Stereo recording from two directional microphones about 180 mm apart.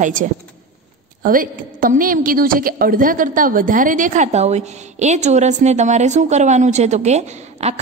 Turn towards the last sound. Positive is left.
turn(degrees=-40)  # may be behind; listen again after turning